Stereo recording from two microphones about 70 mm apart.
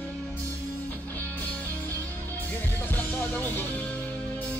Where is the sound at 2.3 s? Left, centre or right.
Left.